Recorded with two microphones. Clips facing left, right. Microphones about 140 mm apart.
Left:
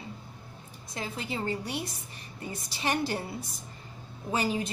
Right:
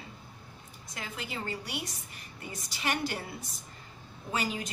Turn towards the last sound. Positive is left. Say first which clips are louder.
# left 4 dB
turn(degrees=30)  # may be behind; listen again after turning